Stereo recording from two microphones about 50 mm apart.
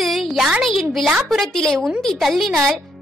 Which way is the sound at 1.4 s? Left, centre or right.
Centre.